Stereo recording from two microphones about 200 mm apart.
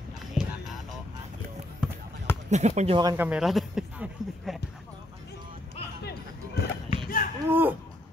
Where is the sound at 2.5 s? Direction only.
35° right (ahead or behind).